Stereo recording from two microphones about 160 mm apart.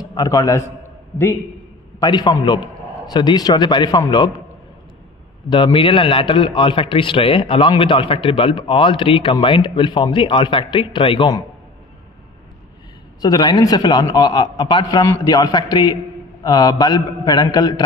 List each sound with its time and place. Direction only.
0.0 s a man's voice: 25° left (ahead or behind)
5.5 s a man's voice: 30° left (ahead or behind)
13.2 s a man's voice: 25° left (ahead or behind)